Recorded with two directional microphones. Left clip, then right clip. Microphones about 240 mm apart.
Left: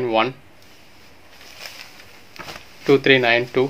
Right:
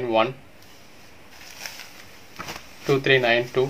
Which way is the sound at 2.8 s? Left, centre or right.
Left.